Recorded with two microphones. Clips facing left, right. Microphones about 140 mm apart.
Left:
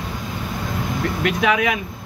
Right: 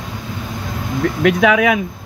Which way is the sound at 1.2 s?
90° right.